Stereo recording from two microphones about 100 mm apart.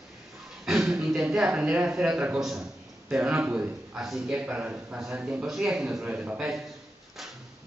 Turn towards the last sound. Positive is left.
turn(degrees=-15)  # may be behind; listen again after turning